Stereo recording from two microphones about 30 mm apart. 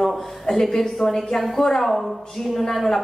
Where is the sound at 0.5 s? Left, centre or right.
Centre.